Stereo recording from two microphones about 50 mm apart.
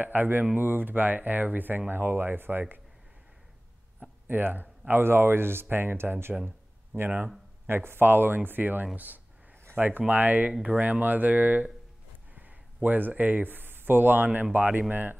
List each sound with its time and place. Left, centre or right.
0.0 s speech: right
4.3 s speech: right